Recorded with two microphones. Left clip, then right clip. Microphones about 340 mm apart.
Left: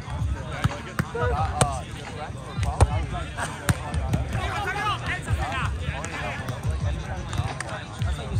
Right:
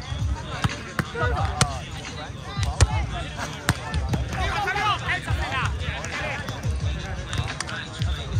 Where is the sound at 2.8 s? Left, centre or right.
Centre.